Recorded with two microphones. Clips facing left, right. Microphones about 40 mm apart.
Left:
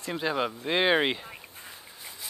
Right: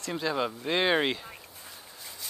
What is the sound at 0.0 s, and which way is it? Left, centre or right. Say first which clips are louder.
Speech: left 1 dB; centre.